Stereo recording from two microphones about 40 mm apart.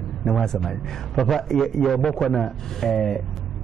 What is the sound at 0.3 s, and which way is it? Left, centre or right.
A man's voice, centre.